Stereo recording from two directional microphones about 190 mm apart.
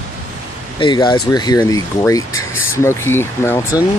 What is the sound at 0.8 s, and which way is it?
Speech, 25° left (ahead or behind).